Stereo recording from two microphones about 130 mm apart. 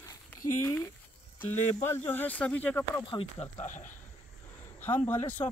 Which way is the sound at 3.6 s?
75° left (ahead or behind).